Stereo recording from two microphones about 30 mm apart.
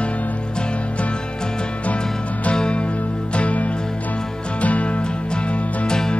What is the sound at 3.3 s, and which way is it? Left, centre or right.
Music, left.